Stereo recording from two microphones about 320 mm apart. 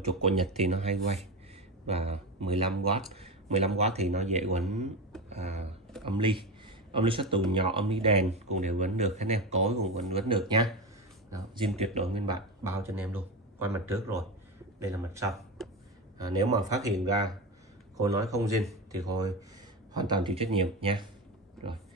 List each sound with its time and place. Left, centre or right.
0.6 s speech: right
15.6 s a sound: centre
16.2 s speech: centre
17.9 s speech: centre